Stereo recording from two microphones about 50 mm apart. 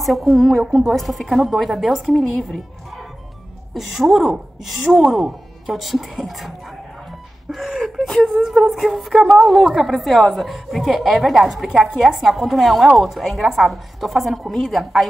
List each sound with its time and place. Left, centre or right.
0.0 s a woman's voice: centre
3.7 s a woman's voice: centre
7.5 s speech: centre
8.1 s speech: centre
8.5 s a woman's voice: centre